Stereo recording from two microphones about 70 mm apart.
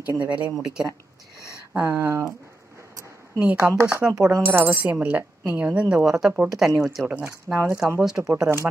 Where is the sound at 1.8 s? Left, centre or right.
Right.